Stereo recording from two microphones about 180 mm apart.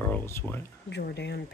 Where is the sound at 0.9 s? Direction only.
70° left (ahead or behind).